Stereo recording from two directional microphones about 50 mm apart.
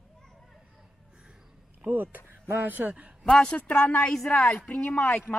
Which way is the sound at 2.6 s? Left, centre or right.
Right.